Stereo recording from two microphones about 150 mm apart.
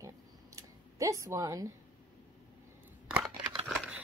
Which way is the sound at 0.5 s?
20° right (ahead or behind).